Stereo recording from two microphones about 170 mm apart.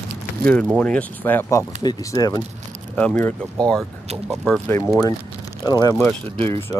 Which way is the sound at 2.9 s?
10° left (ahead or behind).